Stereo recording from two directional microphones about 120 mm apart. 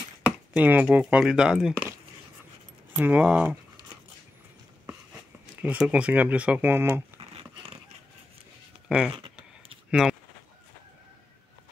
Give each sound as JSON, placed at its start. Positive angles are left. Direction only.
{"t": 0.5, "sound": "speech", "side_deg": -10}
{"t": 3.0, "sound": "speech", "side_deg": -10}
{"t": 5.6, "sound": "speech", "side_deg": -10}
{"t": 7.2, "sound": "dog", "side_deg": -50}
{"t": 8.8, "sound": "speech", "side_deg": -5}
{"t": 9.8, "sound": "a sound", "side_deg": -5}